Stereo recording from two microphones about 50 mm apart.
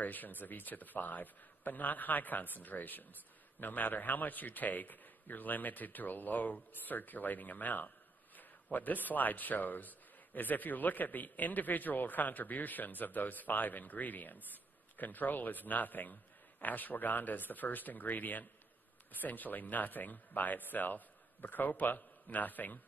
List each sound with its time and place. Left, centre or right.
0.0 s a man's voice: left